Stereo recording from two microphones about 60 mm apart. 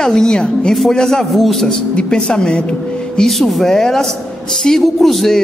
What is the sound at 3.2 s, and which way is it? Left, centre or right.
A woman's voice, centre.